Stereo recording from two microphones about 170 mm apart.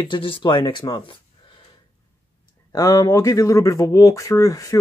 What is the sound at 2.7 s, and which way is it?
Speech, 20° left (ahead or behind).